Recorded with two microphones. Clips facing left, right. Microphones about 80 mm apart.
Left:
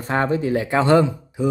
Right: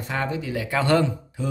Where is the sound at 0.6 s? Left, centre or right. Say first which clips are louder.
Left 4 dB; left.